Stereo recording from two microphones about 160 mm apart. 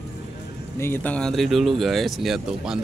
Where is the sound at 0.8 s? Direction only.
15° left (ahead or behind).